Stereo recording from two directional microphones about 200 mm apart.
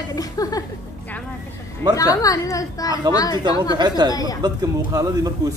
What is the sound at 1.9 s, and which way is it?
A woman's voice, 15° left (ahead or behind).